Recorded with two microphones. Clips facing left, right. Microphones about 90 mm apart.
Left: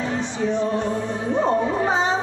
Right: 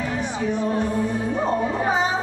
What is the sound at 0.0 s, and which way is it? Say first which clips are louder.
Music: left 1 dB; 20° left (ahead or behind).